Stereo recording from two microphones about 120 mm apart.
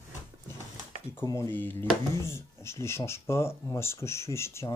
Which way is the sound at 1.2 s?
25° left (ahead or behind).